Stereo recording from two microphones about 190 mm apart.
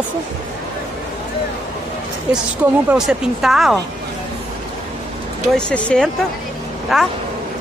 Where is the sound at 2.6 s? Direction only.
10° right (ahead or behind).